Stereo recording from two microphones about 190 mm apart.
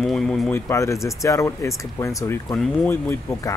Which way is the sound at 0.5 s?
15° left (ahead or behind).